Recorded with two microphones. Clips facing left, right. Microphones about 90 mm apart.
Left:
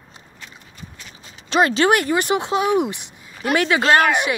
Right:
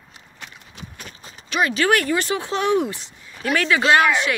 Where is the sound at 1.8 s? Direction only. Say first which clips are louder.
Left 2 dB; 20° left (ahead or behind).